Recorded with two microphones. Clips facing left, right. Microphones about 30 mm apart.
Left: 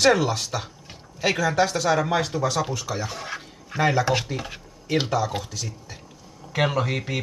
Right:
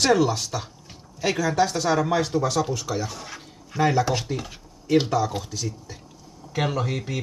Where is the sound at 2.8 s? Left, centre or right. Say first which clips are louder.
Right 1 dB; centre.